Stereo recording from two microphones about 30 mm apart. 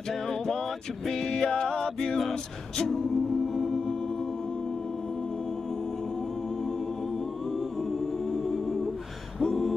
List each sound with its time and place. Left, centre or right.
1.0 s music: centre
2.8 s a capella: centre
3.5 s music: centre
9.4 s a sound: centre